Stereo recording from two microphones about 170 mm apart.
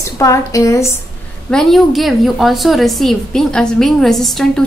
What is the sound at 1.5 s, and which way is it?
A woman's voice, centre (ahead or behind).